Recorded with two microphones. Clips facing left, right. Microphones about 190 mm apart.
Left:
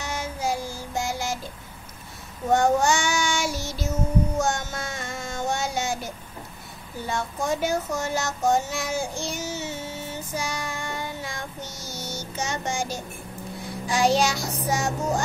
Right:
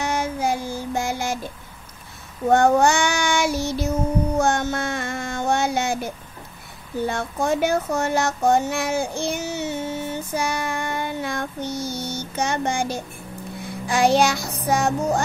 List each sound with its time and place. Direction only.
0.0 s child singing: 60° right (ahead or behind)
2.5 s child singing: 60° right (ahead or behind)
7.1 s child singing: 60° right (ahead or behind)